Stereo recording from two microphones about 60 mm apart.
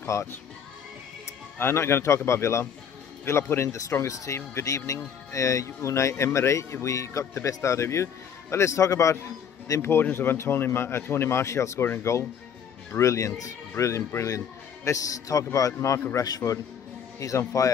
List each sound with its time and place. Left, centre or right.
0.0 s speech: left
1.6 s speech: left
4.0 s speech: left
9.8 s speech: left
11.8 s speech: left
13.0 s a man's voice: left
16.2 s a man's voice: left